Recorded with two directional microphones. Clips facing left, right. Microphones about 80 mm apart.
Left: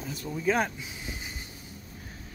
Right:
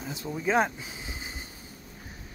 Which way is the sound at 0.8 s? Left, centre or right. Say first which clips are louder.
Even; right.